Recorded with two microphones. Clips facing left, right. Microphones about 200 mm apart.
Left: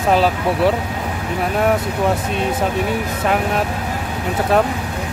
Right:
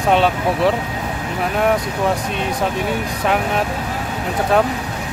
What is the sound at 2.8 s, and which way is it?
Speech, centre (ahead or behind).